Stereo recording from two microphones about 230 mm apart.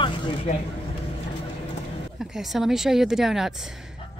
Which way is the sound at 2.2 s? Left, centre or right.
Centre.